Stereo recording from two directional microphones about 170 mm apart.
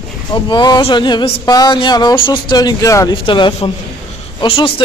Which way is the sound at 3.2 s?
30° left (ahead or behind).